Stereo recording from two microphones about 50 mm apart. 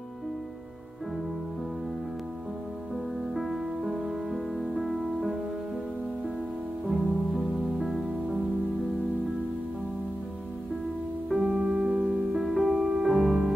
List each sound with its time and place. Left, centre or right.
3.3 s music: centre
6.9 s music: centre
11.2 s music: centre
11.5 s music: right
12.3 s music: centre